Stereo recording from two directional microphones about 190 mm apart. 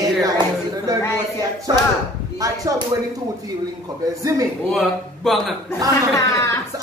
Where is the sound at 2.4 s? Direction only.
20° right (ahead or behind).